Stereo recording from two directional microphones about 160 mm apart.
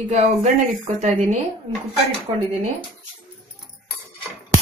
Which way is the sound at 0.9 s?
45° right (ahead or behind).